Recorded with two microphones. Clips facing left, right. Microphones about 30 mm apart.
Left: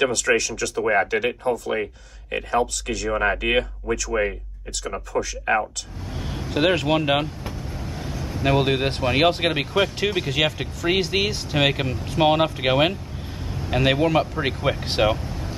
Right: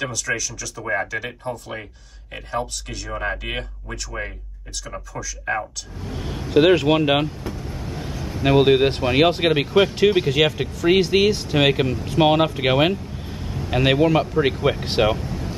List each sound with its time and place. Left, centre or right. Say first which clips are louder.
0.0 s speech: left 5 dB; left
0.9 s speech: left 1 dB; left
5.1 s speech: left 9 dB; left
6.0 s speech: right 2 dB; centre